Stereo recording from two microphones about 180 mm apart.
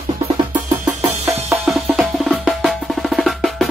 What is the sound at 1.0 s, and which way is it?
Drum, 35° right (ahead or behind).